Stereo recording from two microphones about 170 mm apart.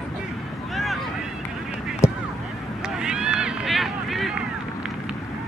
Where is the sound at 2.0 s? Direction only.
15° left (ahead or behind).